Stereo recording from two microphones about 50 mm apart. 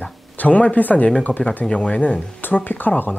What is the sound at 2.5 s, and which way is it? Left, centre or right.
Speech, left.